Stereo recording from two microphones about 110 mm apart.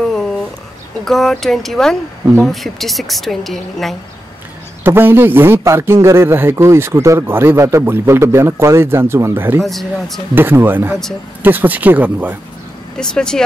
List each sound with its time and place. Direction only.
1.0 s a woman's voice: 5° left (ahead or behind)
4.8 s speech: 20° right (ahead or behind)
9.6 s a woman's voice: centre (ahead or behind)
10.3 s speech: 20° right (ahead or behind)
12.9 s speech: 5° left (ahead or behind)